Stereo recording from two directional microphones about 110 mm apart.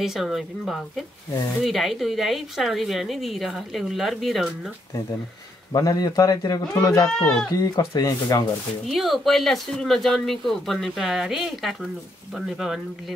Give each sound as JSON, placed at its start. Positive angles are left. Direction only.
{"t": 0.0, "sound": "speech", "side_deg": -5}
{"t": 5.7, "sound": "speech", "side_deg": 35}
{"t": 7.1, "sound": "speech", "side_deg": 5}
{"t": 7.5, "sound": "speech", "side_deg": 35}
{"t": 8.8, "sound": "speech", "side_deg": 0}